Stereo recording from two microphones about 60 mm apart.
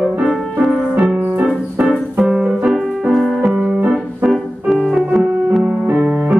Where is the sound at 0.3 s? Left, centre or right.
Centre.